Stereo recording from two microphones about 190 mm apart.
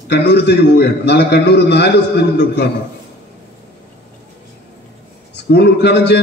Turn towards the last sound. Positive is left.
turn(degrees=60)  # may be behind; listen again after turning